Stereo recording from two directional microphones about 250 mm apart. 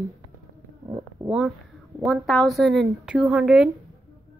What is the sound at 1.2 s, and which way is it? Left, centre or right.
A woman's voice, centre.